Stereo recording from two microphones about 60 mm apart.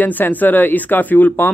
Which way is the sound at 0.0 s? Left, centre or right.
Left.